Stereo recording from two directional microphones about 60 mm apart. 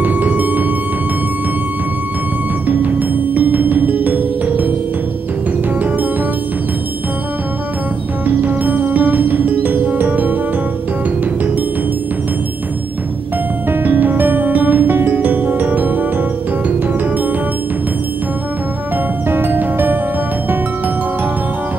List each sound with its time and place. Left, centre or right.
0.0 s music: right
2.7 s music: right
8.4 s music: right
13.7 s music: right
19.2 s music: right